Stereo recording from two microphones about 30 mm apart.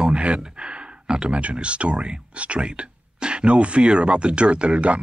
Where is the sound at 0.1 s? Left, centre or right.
Right.